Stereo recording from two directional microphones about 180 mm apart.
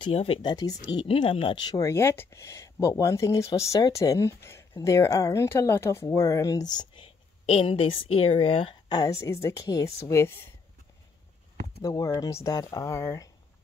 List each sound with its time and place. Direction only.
0.0 s speech: 30° left (ahead or behind)
1.8 s speech: 15° left (ahead or behind)
6.8 s a woman's voice: 30° left (ahead or behind)
11.8 s speech: 20° left (ahead or behind)